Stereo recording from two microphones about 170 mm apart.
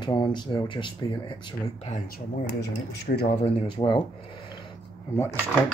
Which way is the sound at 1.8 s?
40° left (ahead or behind).